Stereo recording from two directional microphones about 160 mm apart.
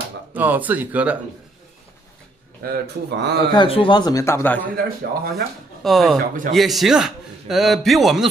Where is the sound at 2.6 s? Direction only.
85° right.